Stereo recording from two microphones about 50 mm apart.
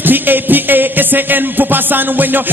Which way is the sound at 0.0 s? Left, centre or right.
Right.